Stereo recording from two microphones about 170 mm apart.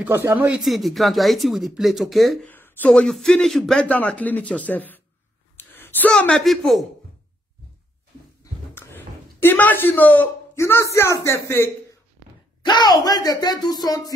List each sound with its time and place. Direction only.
0.0 s speech: 10° right (ahead or behind)
0.7 s speech: centre (ahead or behind)
2.5 s speech: 10° left (ahead or behind)
8.7 s a man's voice: 10° left (ahead or behind)
12.6 s speech: 25° left (ahead or behind)